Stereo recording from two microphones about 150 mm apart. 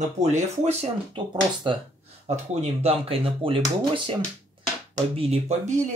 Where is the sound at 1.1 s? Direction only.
30° right (ahead or behind).